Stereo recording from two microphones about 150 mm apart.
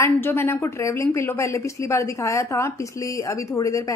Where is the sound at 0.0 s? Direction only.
15° left (ahead or behind).